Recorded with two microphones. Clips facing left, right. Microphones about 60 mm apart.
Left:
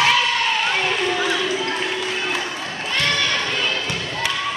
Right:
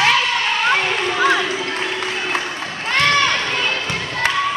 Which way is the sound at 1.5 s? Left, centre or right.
Right.